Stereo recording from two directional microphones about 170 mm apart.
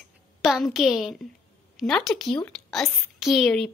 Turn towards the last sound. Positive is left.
turn(degrees=5)  # may be behind; listen again after turning